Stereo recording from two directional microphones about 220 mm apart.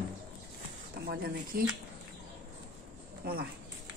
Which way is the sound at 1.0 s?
45° right (ahead or behind).